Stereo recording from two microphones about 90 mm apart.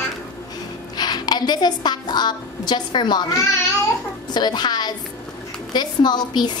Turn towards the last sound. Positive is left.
turn(degrees=50)  # may be behind; listen again after turning